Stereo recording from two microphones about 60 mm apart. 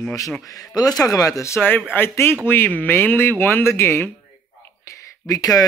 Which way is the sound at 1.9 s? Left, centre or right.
Left.